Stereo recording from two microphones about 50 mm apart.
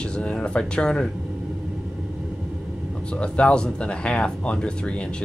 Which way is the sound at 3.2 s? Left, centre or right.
Centre.